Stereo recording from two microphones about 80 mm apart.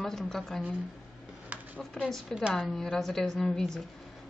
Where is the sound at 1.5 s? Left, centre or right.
Centre.